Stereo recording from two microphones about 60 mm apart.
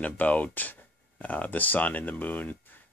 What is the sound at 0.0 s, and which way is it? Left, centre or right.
Speech, left.